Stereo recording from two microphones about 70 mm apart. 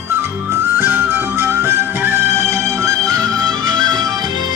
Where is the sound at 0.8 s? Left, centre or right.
Right.